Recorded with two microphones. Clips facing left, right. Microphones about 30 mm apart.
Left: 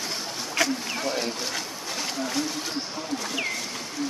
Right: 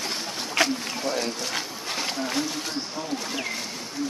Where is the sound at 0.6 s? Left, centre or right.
Right.